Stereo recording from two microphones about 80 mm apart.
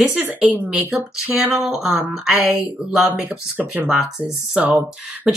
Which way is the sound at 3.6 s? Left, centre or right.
Right.